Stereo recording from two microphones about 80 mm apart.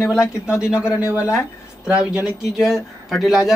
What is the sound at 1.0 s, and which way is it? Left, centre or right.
Speech, left.